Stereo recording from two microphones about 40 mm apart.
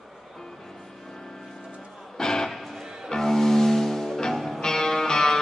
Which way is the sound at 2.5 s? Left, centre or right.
Centre.